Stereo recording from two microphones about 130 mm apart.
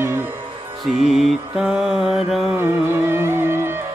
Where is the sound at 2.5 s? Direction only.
20° right (ahead or behind).